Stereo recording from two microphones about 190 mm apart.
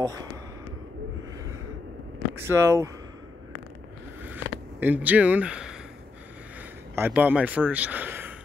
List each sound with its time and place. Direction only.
0.0 s speech: 20° right (ahead or behind)
2.3 s speech: 15° right (ahead or behind)
4.2 s a sound: 10° right (ahead or behind)
7.0 s speech: 10° right (ahead or behind)